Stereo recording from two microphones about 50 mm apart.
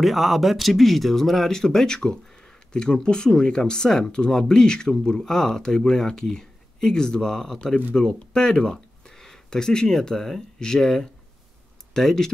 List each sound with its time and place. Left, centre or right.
0.0 s speech: centre